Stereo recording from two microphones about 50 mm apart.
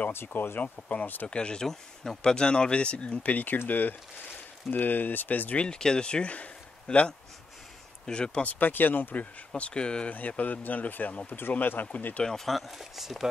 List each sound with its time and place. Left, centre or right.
0.1 s speech: left
1.2 s speech: left
5.6 s a man's voice: centre
8.5 s speech: left
9.6 s speech: left
10.1 s speech: left
11.2 s speech: left
12.3 s speech: centre